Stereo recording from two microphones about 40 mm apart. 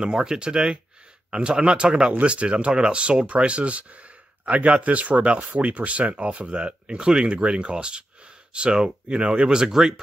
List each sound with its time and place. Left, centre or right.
0.0 s speech: centre